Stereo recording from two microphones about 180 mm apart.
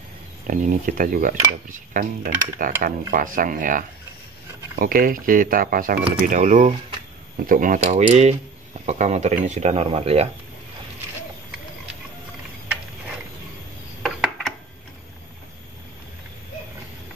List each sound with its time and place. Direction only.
0.5 s speech: 45° right (ahead or behind)
7.8 s speech: 40° right (ahead or behind)